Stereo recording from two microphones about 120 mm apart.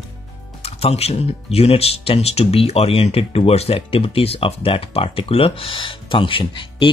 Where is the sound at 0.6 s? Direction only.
55° left (ahead or behind).